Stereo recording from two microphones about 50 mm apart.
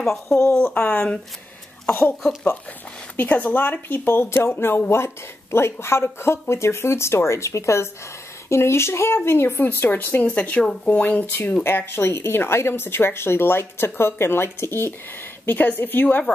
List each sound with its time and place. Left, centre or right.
0.0 s speech: centre
0.4 s a woman's voice: left
0.7 s a woman's voice: left
1.9 s a woman's voice: left
3.2 s a woman's voice: left
9.6 s a woman's voice: left
10.6 s speech: centre
10.9 s a woman's voice: left
11.6 s a woman's voice: left
15.4 s a woman's voice: left